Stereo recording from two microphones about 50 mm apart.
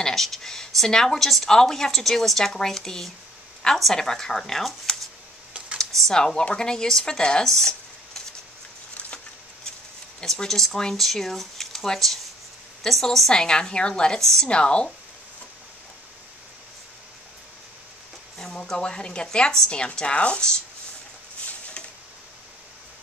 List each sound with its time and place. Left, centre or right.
0.0 s a woman's voice: centre
10.2 s a woman's voice: centre
14.5 s speech: centre
18.4 s a woman's voice: centre